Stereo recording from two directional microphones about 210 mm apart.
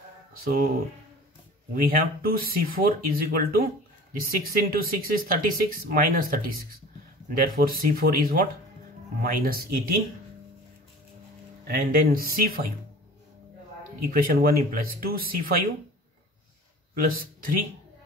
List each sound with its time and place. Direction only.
0.4 s speech: 45° right (ahead or behind)
1.7 s speech: 45° right (ahead or behind)
11.6 s speech: 45° right (ahead or behind)
13.9 s speech: 45° right (ahead or behind)
16.9 s speech: 40° right (ahead or behind)